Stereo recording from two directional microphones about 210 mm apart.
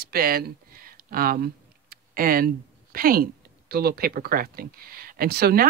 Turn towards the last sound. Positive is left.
turn(degrees=-50)  # may be behind; listen again after turning